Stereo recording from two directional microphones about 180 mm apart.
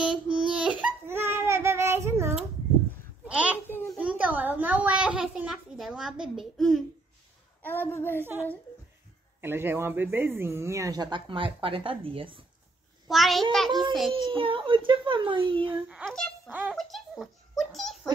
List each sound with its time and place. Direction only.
0.0 s a sound: 5° right (ahead or behind)
3.5 s babbling: 10° left (ahead or behind)
4.0 s a sound: 10° right (ahead or behind)
7.6 s a woman's voice: 10° left (ahead or behind)
8.2 s speech: 10° right (ahead or behind); by 12.4 s 30° right (ahead or behind)
13.1 s a child's voice: centre (ahead or behind)
14.1 s speech: 30° right (ahead or behind)
15.9 s a child's voice: centre (ahead or behind)